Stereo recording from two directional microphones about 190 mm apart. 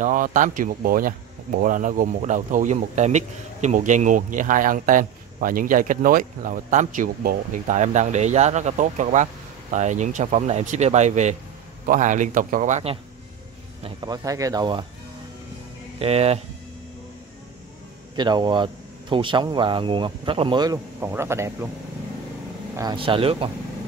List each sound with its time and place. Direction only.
0.0 s speech: 45° right (ahead or behind)
13.8 s speech: 20° right (ahead or behind)
16.0 s speech: 30° right (ahead or behind)
18.1 s a man's voice: 25° right (ahead or behind)
22.8 s speech: 25° right (ahead or behind)